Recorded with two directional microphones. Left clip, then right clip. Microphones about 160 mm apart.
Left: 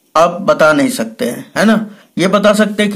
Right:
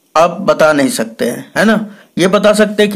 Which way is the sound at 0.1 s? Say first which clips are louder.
Even; 25° right (ahead or behind).